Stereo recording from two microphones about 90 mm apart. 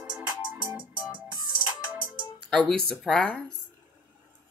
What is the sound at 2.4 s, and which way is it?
Speech, 5° left (ahead or behind).